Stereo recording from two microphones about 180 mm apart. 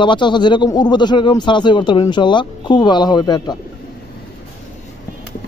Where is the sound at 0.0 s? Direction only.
25° left (ahead or behind).